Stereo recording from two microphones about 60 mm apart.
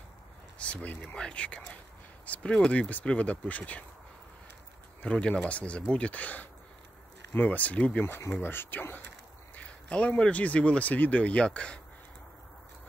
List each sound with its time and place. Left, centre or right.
0.6 s speech: left
5.0 s speech: centre
8.2 s speech: left
9.6 s speech: left